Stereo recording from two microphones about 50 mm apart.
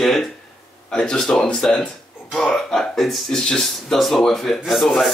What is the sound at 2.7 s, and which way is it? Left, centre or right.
Speech, centre.